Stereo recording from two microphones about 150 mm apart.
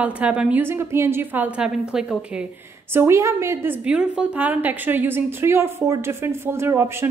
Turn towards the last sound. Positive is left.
turn(degrees=-15)  # may be behind; listen again after turning